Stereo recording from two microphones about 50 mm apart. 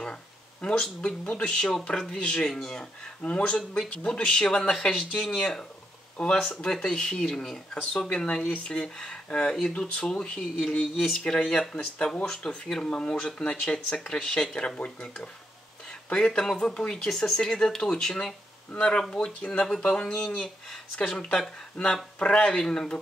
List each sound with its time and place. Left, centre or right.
0.0 s a sound: left
1.2 s speech: left; by 11.2 s centre
11.2 s speech: centre